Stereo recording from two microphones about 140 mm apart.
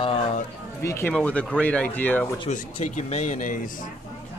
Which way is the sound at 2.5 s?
55° left (ahead or behind).